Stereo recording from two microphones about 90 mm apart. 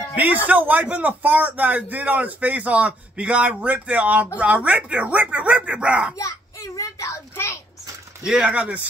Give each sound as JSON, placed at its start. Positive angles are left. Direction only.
{"t": 0.1, "sound": "a man's voice", "side_deg": -15}
{"t": 6.1, "sound": "a sound", "side_deg": 35}
{"t": 8.3, "sound": "a man's voice", "side_deg": -10}